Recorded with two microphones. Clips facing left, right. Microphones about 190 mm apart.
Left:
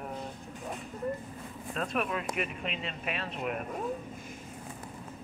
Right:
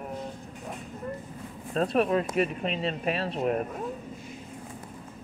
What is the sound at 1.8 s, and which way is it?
Speech, 35° right (ahead or behind).